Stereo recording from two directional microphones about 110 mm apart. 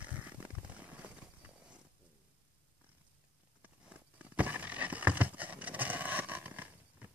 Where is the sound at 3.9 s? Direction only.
15° right (ahead or behind).